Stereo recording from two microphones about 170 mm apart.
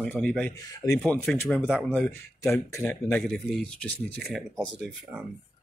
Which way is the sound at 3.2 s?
5° left (ahead or behind).